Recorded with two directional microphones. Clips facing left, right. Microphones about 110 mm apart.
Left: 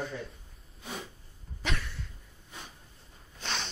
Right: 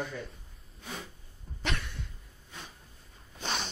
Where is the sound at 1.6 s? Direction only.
Centre (ahead or behind).